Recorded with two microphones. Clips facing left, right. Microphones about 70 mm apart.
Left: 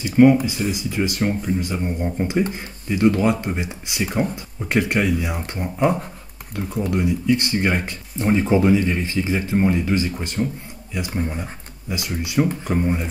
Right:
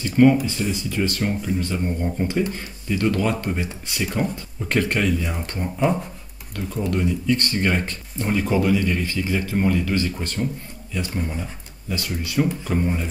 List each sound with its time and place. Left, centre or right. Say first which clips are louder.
0.0 s speech: left 2 dB; centre